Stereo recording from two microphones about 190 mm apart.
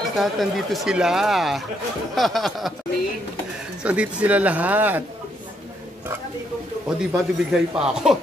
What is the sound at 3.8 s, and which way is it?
Speech, 5° right (ahead or behind).